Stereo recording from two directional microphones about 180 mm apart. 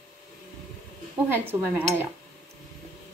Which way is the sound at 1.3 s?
10° right (ahead or behind).